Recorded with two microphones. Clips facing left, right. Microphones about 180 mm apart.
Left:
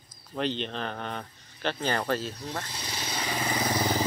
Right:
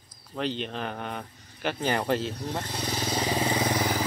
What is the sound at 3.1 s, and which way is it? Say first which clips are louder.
Vehicle: right 4 dB; 35° right (ahead or behind).